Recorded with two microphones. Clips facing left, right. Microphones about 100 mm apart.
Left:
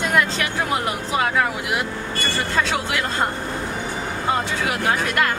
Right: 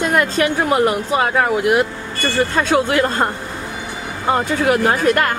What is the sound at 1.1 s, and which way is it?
Speech, 45° right (ahead or behind).